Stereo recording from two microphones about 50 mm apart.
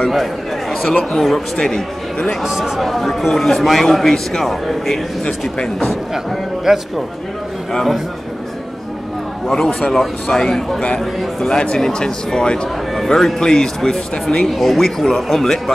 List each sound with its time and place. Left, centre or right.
0.1 s a man's voice: centre
2.4 s a man's voice: centre
6.1 s a man's voice: centre
7.7 s a man's voice: centre
9.5 s a man's voice: centre